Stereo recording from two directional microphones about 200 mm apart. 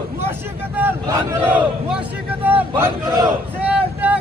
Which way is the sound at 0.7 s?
10° right (ahead or behind).